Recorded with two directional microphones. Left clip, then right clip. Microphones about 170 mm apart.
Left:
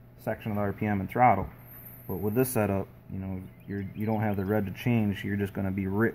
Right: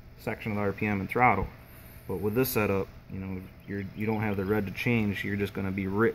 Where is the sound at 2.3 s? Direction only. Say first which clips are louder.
Even; 30° left (ahead or behind).